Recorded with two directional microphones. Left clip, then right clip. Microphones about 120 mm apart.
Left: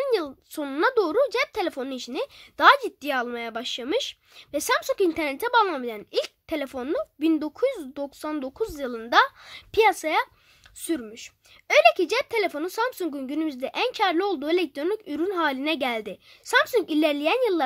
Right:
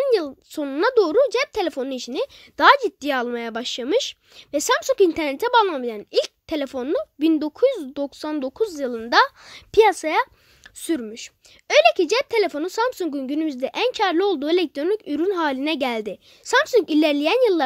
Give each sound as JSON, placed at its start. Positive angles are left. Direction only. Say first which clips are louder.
{"t": 0.0, "sound": "a woman's voice", "louder": "right 5 dB", "side_deg": -35}
{"t": 5.7, "sound": "a woman's voice", "louder": "right 4 dB", "side_deg": -30}